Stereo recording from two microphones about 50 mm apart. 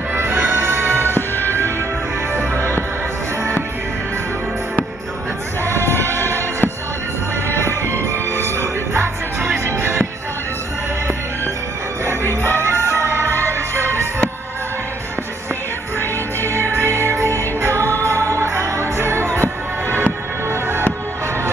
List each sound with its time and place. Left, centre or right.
0.1 s music: right
1.1 s music: left
5.8 s music: left
7.5 s music: right
12.5 s music: right
16.0 s music: left
16.7 s music: right